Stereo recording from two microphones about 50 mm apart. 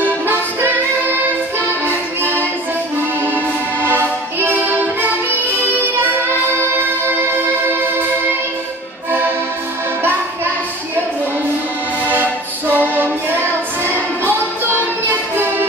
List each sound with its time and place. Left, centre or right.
0.0 s music: right
1.9 s music: right
3.8 s music: right
12.1 s music: right